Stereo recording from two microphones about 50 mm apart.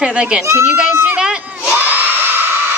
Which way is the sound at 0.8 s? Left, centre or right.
Right.